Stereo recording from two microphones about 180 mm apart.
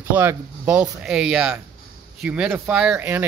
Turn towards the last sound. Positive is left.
turn(degrees=-10)  # may be behind; listen again after turning